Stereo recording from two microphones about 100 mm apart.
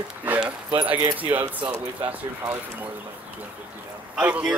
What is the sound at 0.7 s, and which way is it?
Speech, 55° right (ahead or behind).